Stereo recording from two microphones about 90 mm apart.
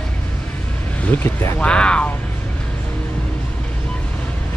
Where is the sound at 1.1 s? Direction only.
25° left (ahead or behind).